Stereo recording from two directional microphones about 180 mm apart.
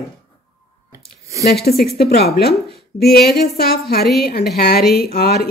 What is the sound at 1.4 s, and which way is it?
Speech, 60° left (ahead or behind).